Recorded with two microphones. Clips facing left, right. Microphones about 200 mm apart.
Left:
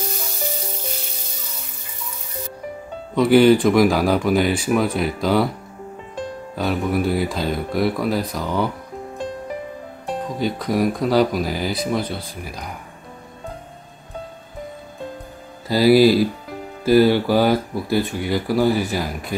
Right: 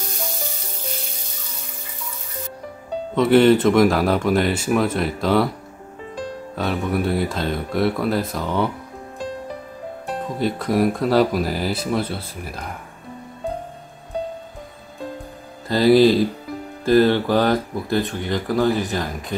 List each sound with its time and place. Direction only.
3.2 s speech: centre (ahead or behind)
6.5 s speech: centre (ahead or behind)
10.4 s speech: centre (ahead or behind)
15.7 s speech: 5° left (ahead or behind)
18.7 s speech: 20° right (ahead or behind)
18.9 s speech: centre (ahead or behind)